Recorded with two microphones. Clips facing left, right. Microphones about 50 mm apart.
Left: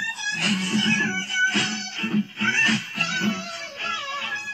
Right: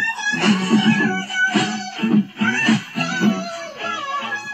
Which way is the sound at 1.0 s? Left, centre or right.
Centre.